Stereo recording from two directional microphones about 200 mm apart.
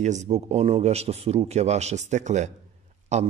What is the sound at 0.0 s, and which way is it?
A man's voice, 35° right (ahead or behind).